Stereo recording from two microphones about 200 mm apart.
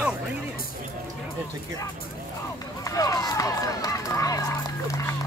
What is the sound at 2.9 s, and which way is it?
Run, 15° left (ahead or behind).